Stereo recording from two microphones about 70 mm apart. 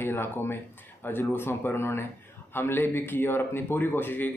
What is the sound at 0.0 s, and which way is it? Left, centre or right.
A man's voice, left.